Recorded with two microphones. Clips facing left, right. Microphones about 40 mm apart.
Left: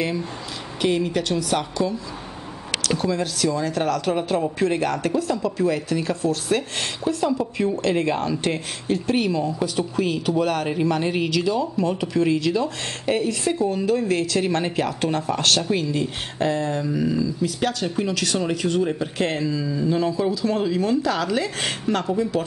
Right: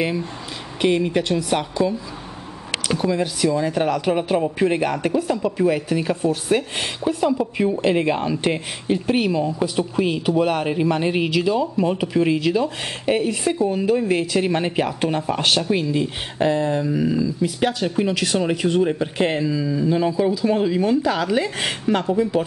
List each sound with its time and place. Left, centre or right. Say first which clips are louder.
0.7 s a woman's voice: right 3 dB; centre